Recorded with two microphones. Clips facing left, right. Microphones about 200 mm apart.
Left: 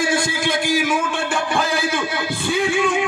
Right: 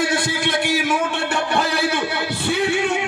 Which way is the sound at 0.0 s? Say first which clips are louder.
Left 1 dB; 65° right (ahead or behind).